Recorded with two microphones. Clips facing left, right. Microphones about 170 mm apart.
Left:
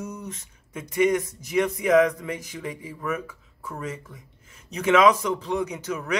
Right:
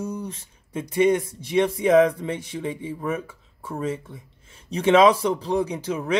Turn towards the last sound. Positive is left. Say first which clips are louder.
# right 3 dB
turn(degrees=-30)  # may be behind; listen again after turning